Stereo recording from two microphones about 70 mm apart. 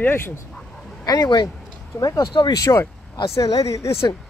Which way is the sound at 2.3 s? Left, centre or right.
Left.